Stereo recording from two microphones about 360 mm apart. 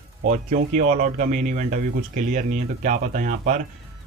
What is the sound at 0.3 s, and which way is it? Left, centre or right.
Speech, right.